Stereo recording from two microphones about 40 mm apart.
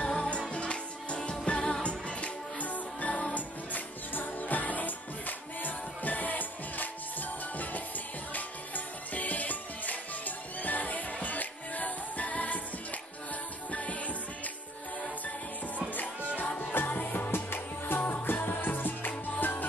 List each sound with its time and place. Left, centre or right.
0.0 s music: left
13.7 s music: left
15.9 s music: left